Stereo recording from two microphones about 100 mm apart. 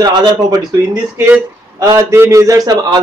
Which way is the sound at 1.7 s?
35° right (ahead or behind).